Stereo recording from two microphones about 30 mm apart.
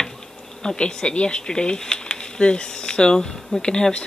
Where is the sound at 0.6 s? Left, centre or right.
Left.